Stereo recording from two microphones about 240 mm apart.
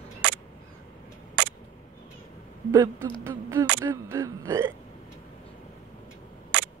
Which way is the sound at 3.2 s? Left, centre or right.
Centre.